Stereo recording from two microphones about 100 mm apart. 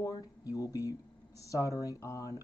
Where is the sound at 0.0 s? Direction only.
40° left (ahead or behind).